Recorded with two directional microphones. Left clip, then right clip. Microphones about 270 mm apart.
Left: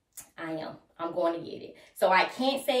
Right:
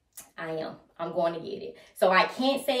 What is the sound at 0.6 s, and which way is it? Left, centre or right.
A woman's voice, centre.